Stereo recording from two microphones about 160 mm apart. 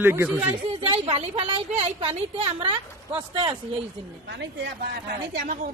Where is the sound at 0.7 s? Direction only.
35° right (ahead or behind).